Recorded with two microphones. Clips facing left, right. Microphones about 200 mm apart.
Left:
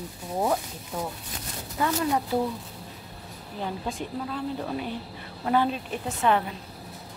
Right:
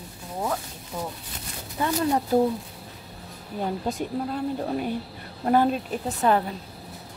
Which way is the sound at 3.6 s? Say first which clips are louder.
Right 4 dB; 45° right (ahead or behind).